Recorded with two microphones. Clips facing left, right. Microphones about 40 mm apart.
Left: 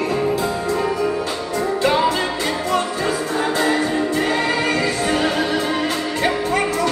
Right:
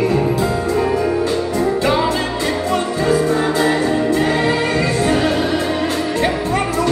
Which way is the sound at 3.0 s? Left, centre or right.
Centre.